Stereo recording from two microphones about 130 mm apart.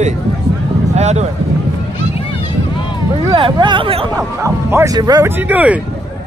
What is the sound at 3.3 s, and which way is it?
Speech, 40° right (ahead or behind).